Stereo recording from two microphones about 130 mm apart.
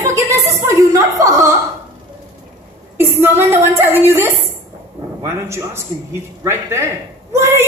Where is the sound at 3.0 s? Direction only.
20° right (ahead or behind).